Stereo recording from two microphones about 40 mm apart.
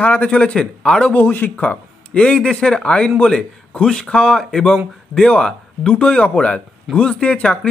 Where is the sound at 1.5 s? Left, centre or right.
Left.